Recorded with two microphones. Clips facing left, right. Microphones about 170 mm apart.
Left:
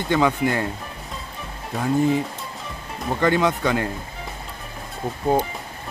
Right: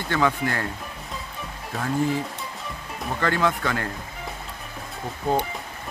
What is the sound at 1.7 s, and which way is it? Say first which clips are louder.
Speech: left 4 dB; centre (ahead or behind).